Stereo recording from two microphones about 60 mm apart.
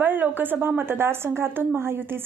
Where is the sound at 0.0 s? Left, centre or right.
Right.